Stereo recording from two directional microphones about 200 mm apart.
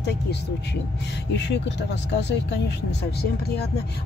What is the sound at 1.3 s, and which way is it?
Speech, 60° left (ahead or behind).